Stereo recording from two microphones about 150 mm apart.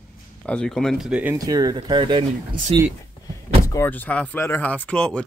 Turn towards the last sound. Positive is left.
turn(degrees=5)  # may be behind; listen again after turning